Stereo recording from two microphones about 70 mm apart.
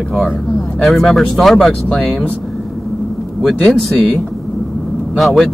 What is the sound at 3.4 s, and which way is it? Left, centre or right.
Speech, centre.